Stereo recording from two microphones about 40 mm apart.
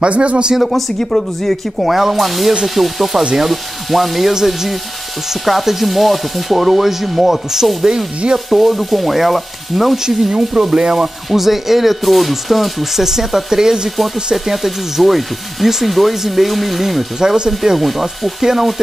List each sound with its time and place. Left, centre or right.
0.0 s speech: right
0.6 s speech: centre
10.3 s speech: centre
11.2 s speech: centre
17.2 s speech: centre
17.7 s speech: centre